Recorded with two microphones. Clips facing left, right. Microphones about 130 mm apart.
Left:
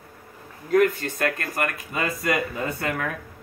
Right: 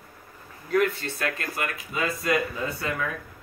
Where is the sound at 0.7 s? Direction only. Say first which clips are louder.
Left 4 dB; 45° left (ahead or behind).